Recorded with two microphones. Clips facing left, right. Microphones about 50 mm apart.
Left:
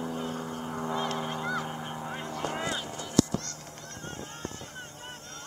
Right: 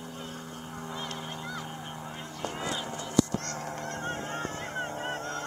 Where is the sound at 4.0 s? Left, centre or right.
Right.